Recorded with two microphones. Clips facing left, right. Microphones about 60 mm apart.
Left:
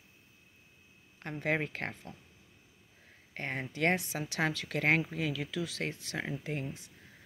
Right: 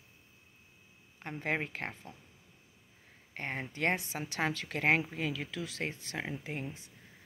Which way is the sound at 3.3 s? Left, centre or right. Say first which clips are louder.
Left 2 dB; right.